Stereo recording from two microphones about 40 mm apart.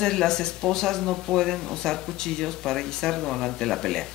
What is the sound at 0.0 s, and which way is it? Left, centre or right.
Speech, centre.